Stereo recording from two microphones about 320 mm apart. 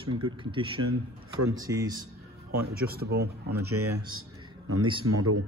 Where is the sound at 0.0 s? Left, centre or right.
Centre.